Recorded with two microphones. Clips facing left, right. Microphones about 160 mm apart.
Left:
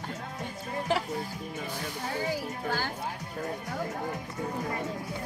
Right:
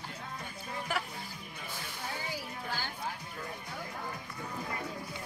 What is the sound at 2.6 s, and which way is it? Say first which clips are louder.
Speech: left 8 dB; 50° left (ahead or behind).